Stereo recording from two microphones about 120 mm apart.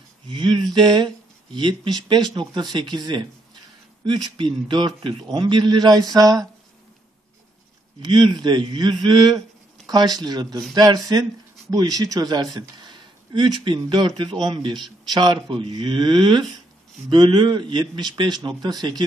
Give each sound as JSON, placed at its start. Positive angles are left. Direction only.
{"t": 0.3, "sound": "speech", "side_deg": -40}
{"t": 8.0, "sound": "speech", "side_deg": -40}